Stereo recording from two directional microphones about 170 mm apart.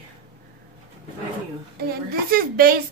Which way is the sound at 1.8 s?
65° right (ahead or behind).